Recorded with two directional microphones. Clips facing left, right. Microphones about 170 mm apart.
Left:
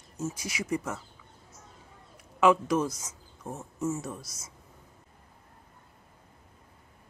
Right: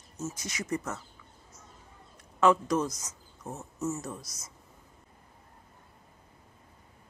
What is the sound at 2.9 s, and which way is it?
Speech, 25° left (ahead or behind).